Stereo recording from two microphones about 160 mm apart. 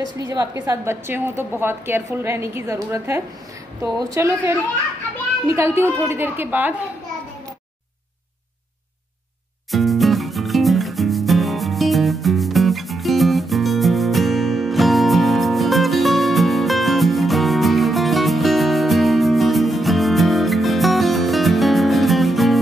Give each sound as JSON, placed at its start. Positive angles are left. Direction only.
{"t": 0.2, "sound": "a woman's voice", "side_deg": -25}
{"t": 5.6, "sound": "a woman's voice", "side_deg": -15}
{"t": 9.7, "sound": "music", "side_deg": 0}